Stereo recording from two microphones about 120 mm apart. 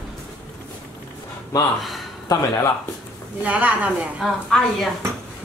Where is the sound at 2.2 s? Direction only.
30° left (ahead or behind).